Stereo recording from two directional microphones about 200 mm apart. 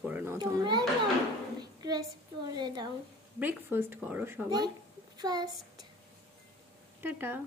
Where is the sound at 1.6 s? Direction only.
20° right (ahead or behind).